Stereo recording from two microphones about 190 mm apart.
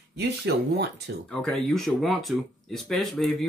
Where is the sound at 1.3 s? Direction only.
Centre (ahead or behind).